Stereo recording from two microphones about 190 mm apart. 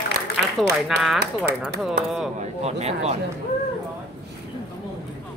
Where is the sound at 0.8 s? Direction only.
Centre (ahead or behind).